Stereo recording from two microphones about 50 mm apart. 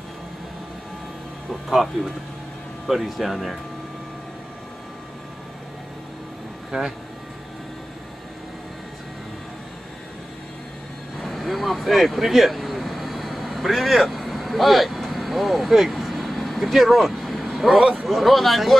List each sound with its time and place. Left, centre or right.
1.5 s speech: centre
6.7 s speech: centre
11.1 s vehicle: centre
18.0 s speech: centre